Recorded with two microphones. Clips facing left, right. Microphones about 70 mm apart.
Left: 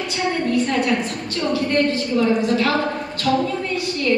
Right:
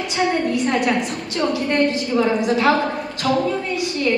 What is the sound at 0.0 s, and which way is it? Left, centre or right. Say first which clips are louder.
A woman's voice: right 2 dB; centre.